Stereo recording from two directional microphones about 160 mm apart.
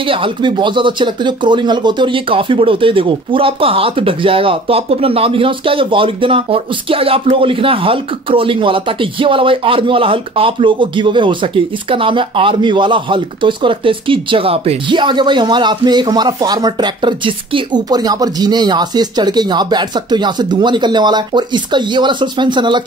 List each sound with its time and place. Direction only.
0.1 s speech: 30° right (ahead or behind)